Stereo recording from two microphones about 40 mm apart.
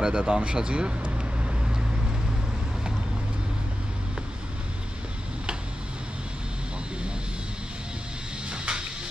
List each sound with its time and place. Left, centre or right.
0.0 s speech: right
1.0 s vehicle: right
8.5 s music: right